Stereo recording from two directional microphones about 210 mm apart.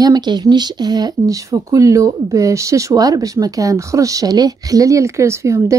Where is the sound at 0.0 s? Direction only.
20° right (ahead or behind).